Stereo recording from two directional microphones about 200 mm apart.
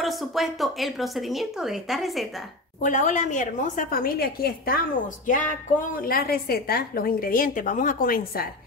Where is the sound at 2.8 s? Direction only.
35° left (ahead or behind).